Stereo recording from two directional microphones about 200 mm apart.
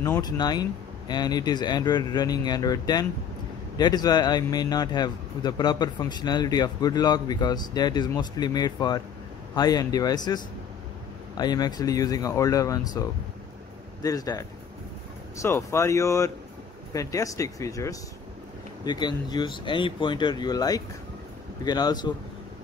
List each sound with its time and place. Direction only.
0.0 s a man's voice: 15° left (ahead or behind)